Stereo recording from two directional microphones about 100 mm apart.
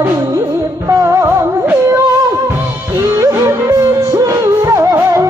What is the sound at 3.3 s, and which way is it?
Music, 30° right (ahead or behind).